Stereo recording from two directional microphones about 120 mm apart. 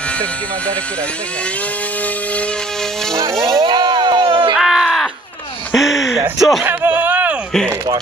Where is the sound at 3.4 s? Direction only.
35° right (ahead or behind).